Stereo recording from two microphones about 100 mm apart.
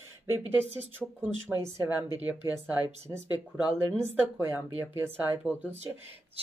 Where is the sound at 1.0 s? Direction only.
20° right (ahead or behind).